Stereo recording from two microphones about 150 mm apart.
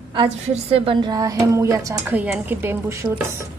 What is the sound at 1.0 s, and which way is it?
A woman's voice, 25° right (ahead or behind).